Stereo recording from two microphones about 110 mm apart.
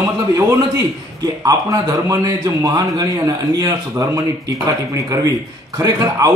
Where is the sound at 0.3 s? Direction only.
35° right (ahead or behind).